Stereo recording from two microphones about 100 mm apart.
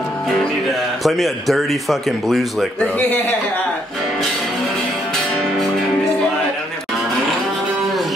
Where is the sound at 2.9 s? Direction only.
15° left (ahead or behind).